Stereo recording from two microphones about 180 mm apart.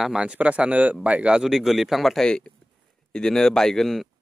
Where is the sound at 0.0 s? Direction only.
5° right (ahead or behind).